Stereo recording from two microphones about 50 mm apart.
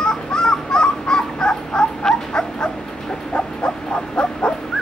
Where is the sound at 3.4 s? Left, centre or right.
Left.